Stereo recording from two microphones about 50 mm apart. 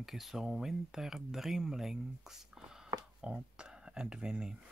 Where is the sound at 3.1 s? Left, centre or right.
Right.